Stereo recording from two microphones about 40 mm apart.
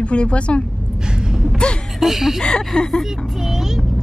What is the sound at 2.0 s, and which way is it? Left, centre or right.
Speech, centre.